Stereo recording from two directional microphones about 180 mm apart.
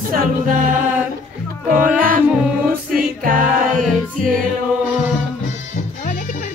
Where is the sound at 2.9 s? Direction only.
50° right (ahead or behind).